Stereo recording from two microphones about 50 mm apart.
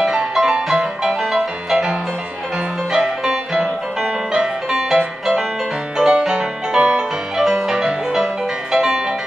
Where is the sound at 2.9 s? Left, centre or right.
Centre.